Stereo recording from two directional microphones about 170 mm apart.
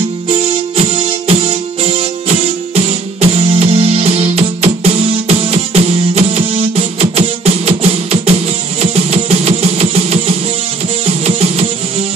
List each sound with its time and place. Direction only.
0.3 s music: 35° right (ahead or behind)